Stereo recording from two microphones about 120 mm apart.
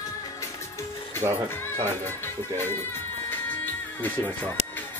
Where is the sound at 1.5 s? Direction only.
20° left (ahead or behind).